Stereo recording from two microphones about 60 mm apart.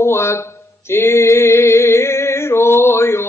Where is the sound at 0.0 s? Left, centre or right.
Left.